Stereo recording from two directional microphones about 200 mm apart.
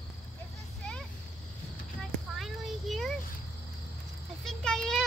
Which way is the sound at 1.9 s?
Centre (ahead or behind).